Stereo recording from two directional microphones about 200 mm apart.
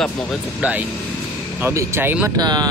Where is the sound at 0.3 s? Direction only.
5° right (ahead or behind).